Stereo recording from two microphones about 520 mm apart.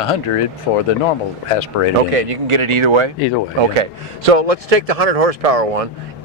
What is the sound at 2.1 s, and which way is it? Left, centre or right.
Speech, right.